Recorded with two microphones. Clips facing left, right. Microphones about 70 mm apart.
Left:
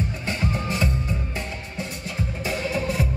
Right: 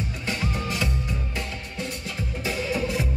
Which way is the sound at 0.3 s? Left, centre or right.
Left.